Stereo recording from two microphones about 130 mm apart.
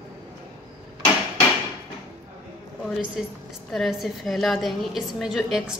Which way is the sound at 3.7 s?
Centre (ahead or behind).